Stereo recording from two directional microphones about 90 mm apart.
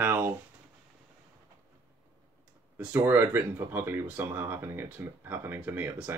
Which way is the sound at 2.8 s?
20° right (ahead or behind).